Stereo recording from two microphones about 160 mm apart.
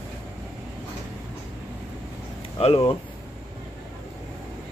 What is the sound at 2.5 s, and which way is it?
Speech, 40° left (ahead or behind).